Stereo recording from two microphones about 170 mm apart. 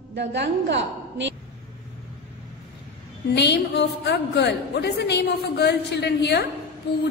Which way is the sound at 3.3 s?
85° left.